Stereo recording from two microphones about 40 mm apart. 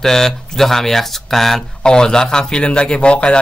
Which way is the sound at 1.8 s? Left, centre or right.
Centre.